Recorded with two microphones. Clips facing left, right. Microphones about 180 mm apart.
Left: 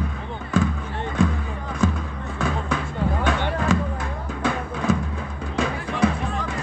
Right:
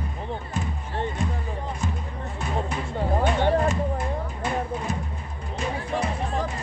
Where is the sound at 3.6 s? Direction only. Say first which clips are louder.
Left 1 dB; 90° left.